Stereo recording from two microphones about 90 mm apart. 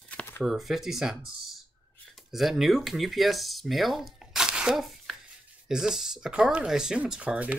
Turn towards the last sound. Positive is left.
turn(degrees=-15)  # may be behind; listen again after turning